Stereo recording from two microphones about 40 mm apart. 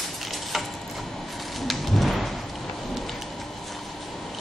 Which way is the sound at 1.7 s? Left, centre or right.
Centre.